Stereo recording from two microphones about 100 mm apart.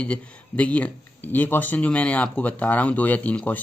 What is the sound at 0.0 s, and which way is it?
Speech, 10° left (ahead or behind).